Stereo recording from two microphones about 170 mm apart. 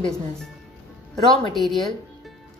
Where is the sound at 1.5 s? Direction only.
Centre (ahead or behind).